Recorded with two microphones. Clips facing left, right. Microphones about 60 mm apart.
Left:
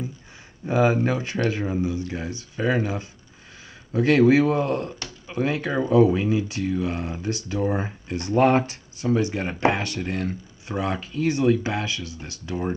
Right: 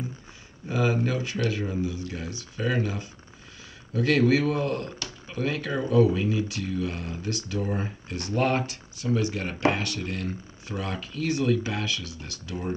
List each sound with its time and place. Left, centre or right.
0.7 s speech: left